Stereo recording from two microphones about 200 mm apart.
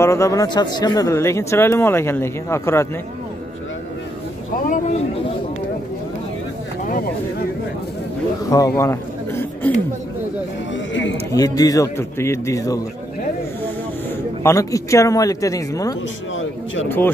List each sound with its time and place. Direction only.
0.0 s speech: 15° left (ahead or behind)
4.6 s speech: 40° left (ahead or behind)
8.5 s a man's voice: 15° left (ahead or behind)
10.9 s a sound: 65° left (ahead or behind)
11.3 s speech: 20° left (ahead or behind)
14.4 s speech: 15° left (ahead or behind)